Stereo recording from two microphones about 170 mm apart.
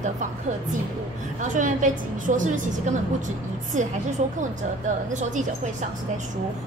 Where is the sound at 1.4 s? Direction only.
50° right (ahead or behind).